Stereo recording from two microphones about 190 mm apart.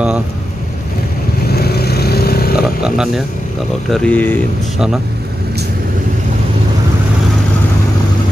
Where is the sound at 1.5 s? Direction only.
55° left (ahead or behind).